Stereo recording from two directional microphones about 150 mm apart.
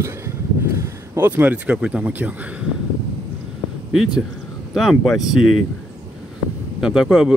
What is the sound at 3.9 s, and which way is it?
Speech, 5° right (ahead or behind).